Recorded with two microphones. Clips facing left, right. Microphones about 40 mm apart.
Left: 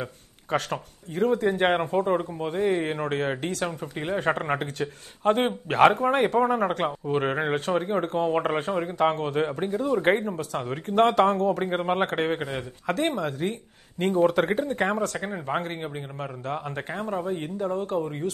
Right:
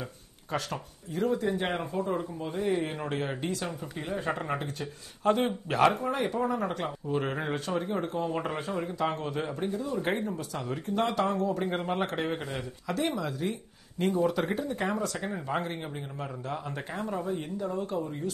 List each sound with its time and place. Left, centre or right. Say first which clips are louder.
0.0 s speech: left 6 dB; left
11.6 s a man's voice: left 5 dB; left
15.1 s a man's voice: left 3 dB; left